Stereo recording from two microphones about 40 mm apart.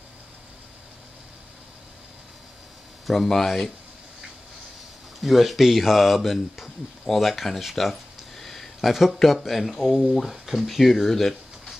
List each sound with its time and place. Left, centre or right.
3.1 s speech: centre
5.2 s speech: centre
7.7 s a sound: centre
8.9 s speech: centre